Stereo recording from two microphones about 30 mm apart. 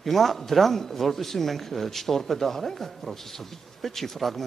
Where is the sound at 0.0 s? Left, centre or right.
Centre.